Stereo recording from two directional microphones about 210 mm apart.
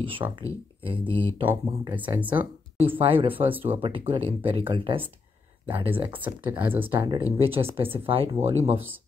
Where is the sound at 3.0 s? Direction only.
25° right (ahead or behind).